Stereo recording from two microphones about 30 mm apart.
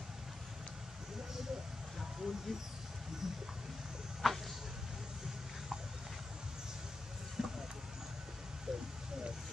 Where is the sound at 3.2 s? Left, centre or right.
Centre.